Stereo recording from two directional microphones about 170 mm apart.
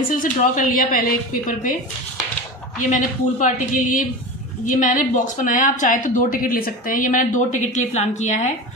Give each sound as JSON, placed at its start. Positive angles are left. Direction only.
{"t": 0.1, "sound": "speech", "side_deg": 50}
{"t": 2.8, "sound": "speech", "side_deg": 50}